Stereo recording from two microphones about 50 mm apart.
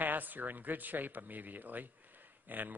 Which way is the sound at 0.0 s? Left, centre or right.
Right.